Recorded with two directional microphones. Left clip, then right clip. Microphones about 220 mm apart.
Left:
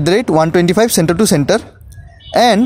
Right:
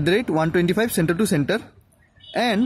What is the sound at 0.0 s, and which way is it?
Speech, 15° left (ahead or behind).